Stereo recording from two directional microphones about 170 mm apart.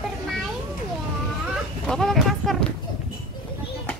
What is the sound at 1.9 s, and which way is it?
Speech, centre (ahead or behind).